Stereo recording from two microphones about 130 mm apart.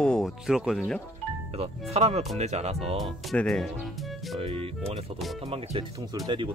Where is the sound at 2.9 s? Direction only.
5° left (ahead or behind).